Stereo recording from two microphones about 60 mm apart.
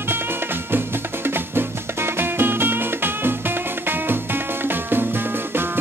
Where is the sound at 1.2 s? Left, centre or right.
Right.